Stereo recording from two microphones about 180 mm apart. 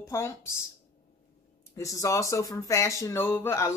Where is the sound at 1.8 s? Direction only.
15° left (ahead or behind).